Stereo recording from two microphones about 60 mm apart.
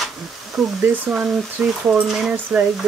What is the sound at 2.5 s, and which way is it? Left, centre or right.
Speech, right.